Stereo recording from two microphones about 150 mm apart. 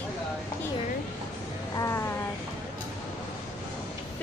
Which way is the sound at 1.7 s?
20° left (ahead or behind).